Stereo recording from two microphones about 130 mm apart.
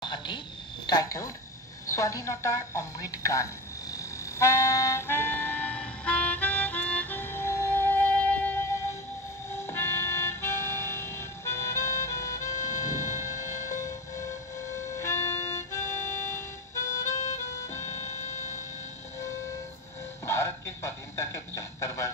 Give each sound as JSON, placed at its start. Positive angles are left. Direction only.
{"t": 0.0, "sound": "frog", "side_deg": 35}
{"t": 0.8, "sound": "a woman's voice", "side_deg": 30}
{"t": 3.9, "sound": "harmonica", "side_deg": 20}
{"t": 9.7, "sound": "vehicle", "side_deg": 20}
{"t": 13.2, "sound": "music", "side_deg": 25}
{"t": 15.0, "sound": "music", "side_deg": 20}
{"t": 17.1, "sound": "music", "side_deg": 65}
{"t": 17.6, "sound": "music", "side_deg": 20}
{"t": 20.2, "sound": "a sound", "side_deg": 20}